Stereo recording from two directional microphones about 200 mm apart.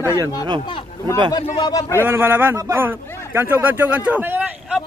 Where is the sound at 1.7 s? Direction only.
10° left (ahead or behind).